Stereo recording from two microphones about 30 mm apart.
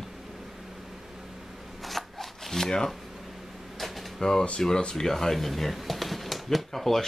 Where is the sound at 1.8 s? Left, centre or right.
Centre.